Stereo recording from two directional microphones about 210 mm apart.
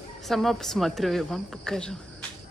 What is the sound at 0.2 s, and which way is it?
Speech, centre (ahead or behind).